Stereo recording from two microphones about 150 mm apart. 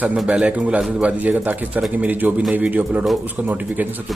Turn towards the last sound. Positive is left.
turn(degrees=-10)  # may be behind; listen again after turning